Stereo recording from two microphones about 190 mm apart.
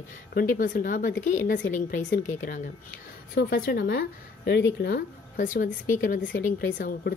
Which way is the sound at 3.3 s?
55° left (ahead or behind).